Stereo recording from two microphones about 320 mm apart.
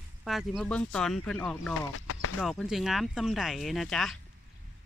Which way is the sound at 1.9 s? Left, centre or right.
Left.